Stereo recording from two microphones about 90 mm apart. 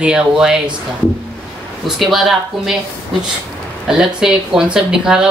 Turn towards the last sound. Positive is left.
turn(degrees=-10)  # may be behind; listen again after turning